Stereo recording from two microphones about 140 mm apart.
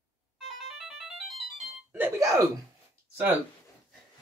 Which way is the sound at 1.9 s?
20° right (ahead or behind).